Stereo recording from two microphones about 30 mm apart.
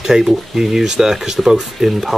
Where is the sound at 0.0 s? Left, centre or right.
Centre.